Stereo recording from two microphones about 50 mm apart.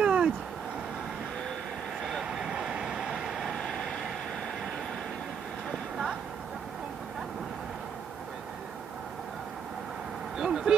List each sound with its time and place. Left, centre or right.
0.0 s cat: centre
2.2 s vehicle: centre
10.3 s vehicle: centre